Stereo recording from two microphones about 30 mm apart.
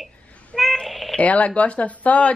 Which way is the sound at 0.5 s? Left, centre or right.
Centre.